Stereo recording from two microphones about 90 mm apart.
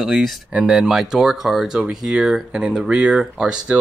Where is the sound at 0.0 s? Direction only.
Centre (ahead or behind).